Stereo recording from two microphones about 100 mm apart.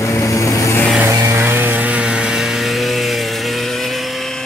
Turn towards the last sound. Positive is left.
turn(degrees=0)  # may be behind; listen again after turning